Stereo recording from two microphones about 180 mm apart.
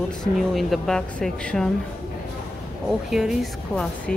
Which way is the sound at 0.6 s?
Centre (ahead or behind).